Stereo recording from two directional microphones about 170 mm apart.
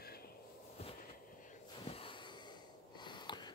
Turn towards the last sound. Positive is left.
turn(degrees=25)  # may be behind; listen again after turning